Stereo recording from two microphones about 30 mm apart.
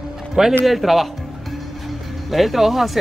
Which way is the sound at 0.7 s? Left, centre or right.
Centre.